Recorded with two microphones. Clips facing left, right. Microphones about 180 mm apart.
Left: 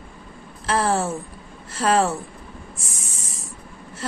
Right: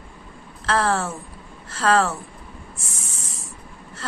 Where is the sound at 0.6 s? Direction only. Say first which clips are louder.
Left 1 dB; 10° left (ahead or behind).